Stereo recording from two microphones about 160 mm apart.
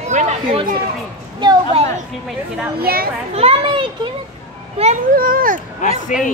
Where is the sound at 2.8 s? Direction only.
70° right (ahead or behind).